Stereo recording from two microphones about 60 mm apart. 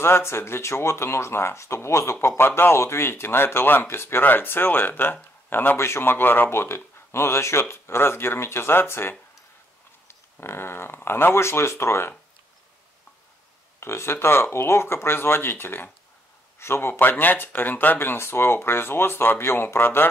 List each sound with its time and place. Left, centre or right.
0.0 s speech: left
13.7 s a man's voice: left
17.0 s speech: left